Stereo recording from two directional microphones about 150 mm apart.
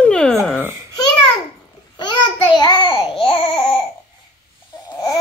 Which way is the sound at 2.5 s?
30° left (ahead or behind).